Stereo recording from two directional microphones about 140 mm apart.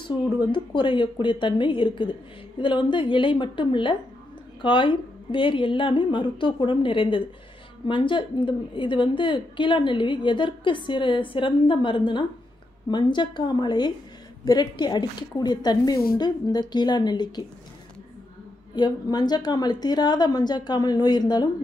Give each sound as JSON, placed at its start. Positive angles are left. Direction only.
{"t": 0.4, "sound": "a woman's voice", "side_deg": 35}
{"t": 18.8, "sound": "a woman's voice", "side_deg": 30}